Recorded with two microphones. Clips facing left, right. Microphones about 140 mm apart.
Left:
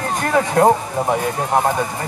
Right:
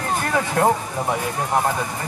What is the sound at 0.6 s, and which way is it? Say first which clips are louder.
Speech: left 5 dB; 25° left (ahead or behind).